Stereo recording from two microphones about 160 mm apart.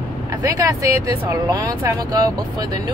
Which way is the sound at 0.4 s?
20° right (ahead or behind).